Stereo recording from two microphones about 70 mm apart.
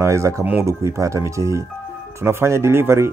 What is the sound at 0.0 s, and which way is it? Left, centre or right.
Speech, right.